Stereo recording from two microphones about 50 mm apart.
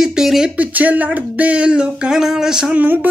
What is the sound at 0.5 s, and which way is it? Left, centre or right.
Speech, right.